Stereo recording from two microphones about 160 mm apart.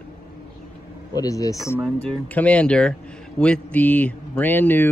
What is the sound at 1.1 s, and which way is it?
Speech, 20° left (ahead or behind).